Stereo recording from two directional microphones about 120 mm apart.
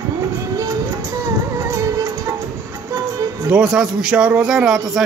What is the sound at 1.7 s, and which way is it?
Music, 25° right (ahead or behind).